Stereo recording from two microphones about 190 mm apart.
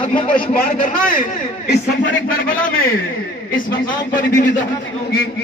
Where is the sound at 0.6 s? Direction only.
45° left (ahead or behind).